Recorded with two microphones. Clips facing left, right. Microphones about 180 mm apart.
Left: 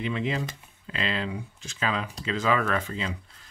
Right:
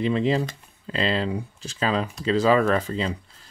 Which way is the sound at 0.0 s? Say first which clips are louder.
Right 7 dB; 35° right (ahead or behind).